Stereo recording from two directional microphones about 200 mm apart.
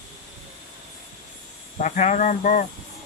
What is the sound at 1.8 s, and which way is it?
Speech, 35° left (ahead or behind).